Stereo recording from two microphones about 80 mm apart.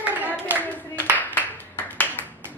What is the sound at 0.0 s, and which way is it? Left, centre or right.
Clapping, right.